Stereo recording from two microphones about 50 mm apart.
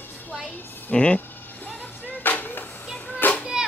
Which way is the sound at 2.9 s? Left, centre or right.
Left.